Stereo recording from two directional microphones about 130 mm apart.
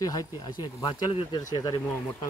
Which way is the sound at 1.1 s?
45° left (ahead or behind).